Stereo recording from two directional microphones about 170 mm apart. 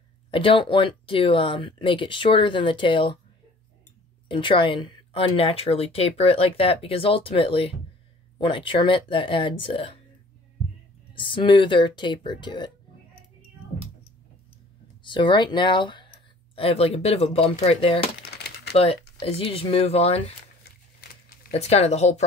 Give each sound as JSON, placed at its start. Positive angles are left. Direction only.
{"t": 0.3, "sound": "speech", "side_deg": 30}
{"t": 4.3, "sound": "speech", "side_deg": 30}
{"t": 11.1, "sound": "speech", "side_deg": 30}
{"t": 15.0, "sound": "speech", "side_deg": 30}
{"t": 18.3, "sound": "crumpling", "side_deg": 75}
{"t": 18.8, "sound": "speech", "side_deg": 35}
{"t": 21.5, "sound": "speech", "side_deg": 40}